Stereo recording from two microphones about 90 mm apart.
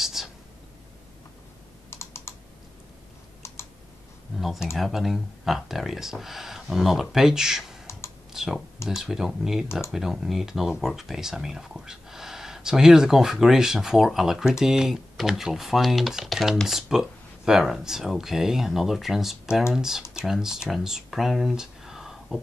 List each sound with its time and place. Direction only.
0.0 s whispering: 5° right (ahead or behind)
1.9 s computer keyboard: 30° left (ahead or behind)
3.4 s typing: 30° left (ahead or behind)
4.4 s speech: centre (ahead or behind)
8.3 s computer keyboard: 5° right (ahead or behind)
8.8 s speech: 5° right (ahead or behind)